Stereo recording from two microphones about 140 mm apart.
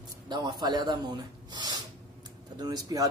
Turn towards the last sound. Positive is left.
turn(degrees=-25)  # may be behind; listen again after turning